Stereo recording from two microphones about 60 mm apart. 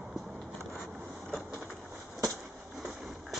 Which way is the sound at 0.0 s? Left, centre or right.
Centre.